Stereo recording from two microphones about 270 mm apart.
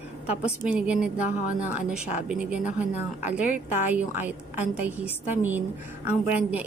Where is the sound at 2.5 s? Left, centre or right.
Left.